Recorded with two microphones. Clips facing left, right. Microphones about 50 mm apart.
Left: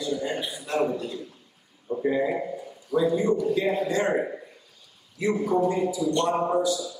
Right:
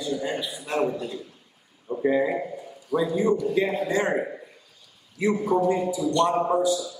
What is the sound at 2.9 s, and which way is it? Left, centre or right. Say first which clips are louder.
Speech: even; centre.